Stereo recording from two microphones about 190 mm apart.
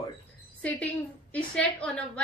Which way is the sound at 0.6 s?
10° left (ahead or behind).